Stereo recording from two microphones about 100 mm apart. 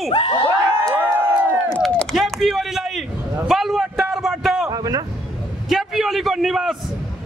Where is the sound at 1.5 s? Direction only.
10° left (ahead or behind).